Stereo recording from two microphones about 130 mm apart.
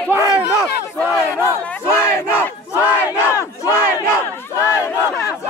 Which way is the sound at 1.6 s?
15° left (ahead or behind).